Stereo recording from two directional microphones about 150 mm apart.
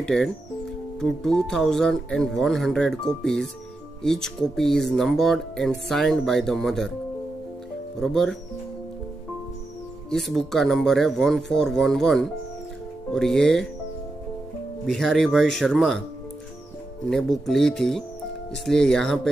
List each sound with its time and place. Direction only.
0.0 s speech: 5° left (ahead or behind)
8.0 s speech: centre (ahead or behind)
10.0 s speech: 5° left (ahead or behind)
14.9 s speech: centre (ahead or behind)
17.1 s speech: centre (ahead or behind)